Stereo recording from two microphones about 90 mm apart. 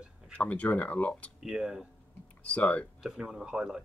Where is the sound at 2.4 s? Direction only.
15° left (ahead or behind).